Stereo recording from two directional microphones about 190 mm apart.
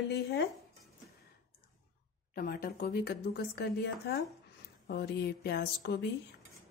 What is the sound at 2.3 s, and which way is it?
A woman's voice, 50° left (ahead or behind).